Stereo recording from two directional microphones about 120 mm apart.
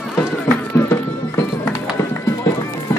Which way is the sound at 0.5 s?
15° left (ahead or behind).